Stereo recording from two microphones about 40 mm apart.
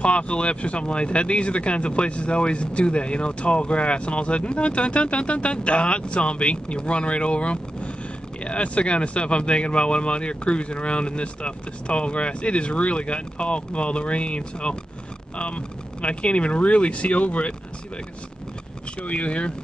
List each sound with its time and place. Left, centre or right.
0.0 s speech: left
19.0 s speech: left